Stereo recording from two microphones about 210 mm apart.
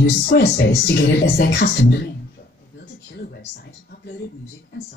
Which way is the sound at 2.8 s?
50° left (ahead or behind).